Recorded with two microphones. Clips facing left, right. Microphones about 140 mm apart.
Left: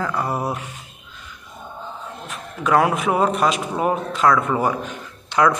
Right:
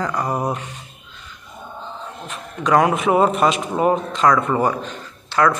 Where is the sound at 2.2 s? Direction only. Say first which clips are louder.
Right 1 dB; centre (ahead or behind).